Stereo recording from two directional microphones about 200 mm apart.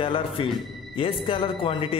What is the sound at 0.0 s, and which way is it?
A man's voice, 25° left (ahead or behind).